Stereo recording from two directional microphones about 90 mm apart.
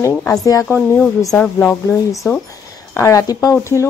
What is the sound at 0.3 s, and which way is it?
Speech, 40° left (ahead or behind).